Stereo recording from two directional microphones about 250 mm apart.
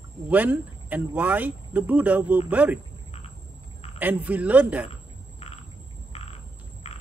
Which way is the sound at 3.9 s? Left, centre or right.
Centre.